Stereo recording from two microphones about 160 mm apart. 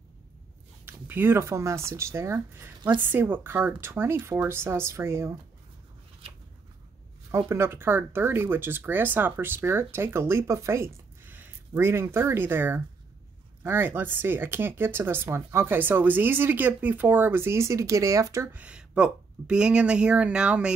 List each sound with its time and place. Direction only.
0.8 s speech: 10° right (ahead or behind)
7.2 s speech: 15° right (ahead or behind)